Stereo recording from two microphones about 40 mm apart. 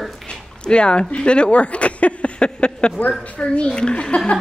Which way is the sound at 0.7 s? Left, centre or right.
Left.